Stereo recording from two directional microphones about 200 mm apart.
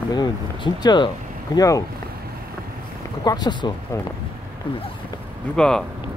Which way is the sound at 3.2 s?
20° left (ahead or behind).